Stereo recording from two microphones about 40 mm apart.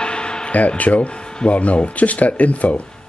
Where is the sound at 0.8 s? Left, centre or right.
Left.